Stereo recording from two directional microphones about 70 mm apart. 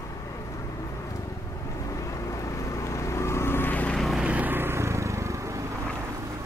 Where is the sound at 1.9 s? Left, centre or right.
Left.